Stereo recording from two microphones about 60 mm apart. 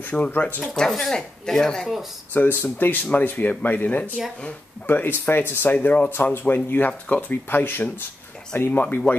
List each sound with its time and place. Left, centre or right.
0.0 s speech: left
0.6 s speech: centre
2.3 s speech: left